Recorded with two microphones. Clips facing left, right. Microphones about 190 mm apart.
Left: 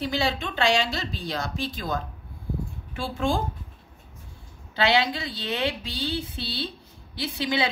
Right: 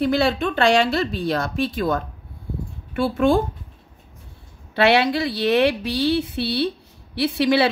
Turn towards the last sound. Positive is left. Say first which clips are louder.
# right 9 dB
turn(degrees=-70)  # may be behind; listen again after turning